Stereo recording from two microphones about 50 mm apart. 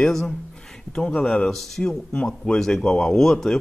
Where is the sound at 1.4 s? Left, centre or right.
Centre.